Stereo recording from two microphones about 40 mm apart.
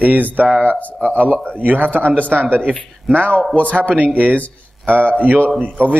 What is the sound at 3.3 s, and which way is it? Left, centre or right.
Speech, left.